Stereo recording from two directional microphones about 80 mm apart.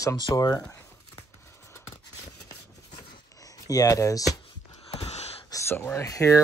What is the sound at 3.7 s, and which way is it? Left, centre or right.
Speech, left.